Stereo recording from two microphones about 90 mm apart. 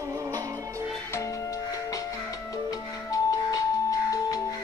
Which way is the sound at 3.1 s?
40° left (ahead or behind).